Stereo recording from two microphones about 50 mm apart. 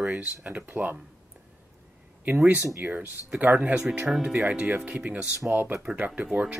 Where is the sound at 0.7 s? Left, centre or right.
Right.